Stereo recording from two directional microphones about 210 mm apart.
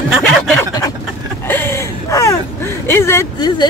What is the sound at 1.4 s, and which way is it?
Speech, 10° left (ahead or behind).